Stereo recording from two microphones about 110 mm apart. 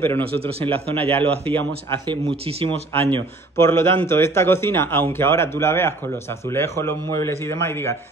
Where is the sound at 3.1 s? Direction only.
20° left (ahead or behind).